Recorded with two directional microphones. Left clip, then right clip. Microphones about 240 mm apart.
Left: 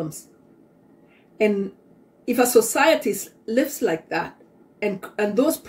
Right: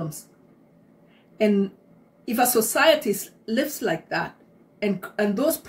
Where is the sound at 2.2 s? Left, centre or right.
Centre.